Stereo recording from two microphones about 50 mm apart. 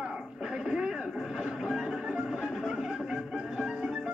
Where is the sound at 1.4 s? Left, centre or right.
Centre.